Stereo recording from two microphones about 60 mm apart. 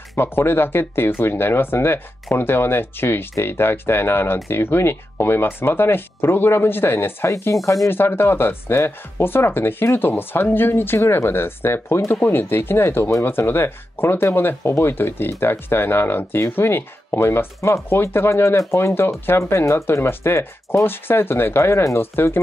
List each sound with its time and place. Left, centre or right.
0.2 s speech: left
7.6 s speech: left
7.9 s speech: left